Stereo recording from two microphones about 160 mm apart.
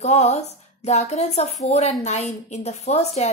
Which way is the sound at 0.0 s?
45° left (ahead or behind).